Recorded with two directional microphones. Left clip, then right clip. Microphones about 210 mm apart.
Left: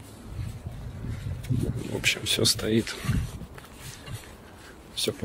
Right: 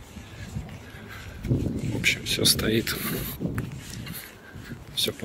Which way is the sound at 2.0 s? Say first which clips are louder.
Even; 25° left (ahead or behind).